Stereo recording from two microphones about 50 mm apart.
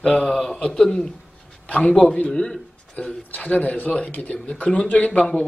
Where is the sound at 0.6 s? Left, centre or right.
Centre.